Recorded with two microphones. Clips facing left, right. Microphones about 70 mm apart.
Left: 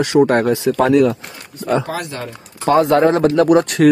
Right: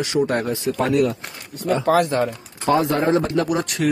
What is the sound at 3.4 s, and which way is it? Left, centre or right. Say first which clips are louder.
Speech: left 10 dB; left.